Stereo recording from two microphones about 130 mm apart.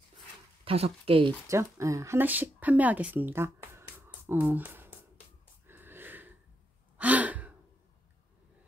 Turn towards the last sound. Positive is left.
turn(degrees=-10)  # may be behind; listen again after turning